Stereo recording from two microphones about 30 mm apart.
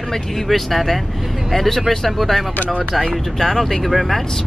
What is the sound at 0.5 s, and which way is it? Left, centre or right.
Speech, centre.